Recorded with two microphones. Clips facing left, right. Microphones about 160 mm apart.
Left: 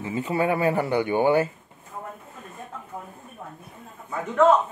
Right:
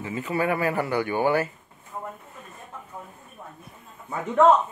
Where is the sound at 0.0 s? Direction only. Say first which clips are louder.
Left 2 dB; 25° left (ahead or behind).